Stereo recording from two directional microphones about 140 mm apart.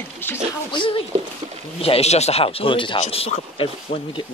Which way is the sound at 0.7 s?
35° left (ahead or behind).